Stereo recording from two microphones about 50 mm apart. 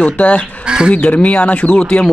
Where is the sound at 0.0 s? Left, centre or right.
Left.